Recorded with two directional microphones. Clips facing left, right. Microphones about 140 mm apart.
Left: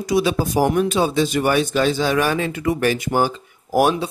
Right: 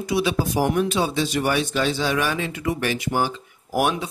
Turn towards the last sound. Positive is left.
turn(degrees=35)  # may be behind; listen again after turning